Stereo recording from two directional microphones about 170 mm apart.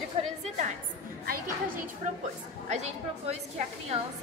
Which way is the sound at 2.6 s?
40° right (ahead or behind).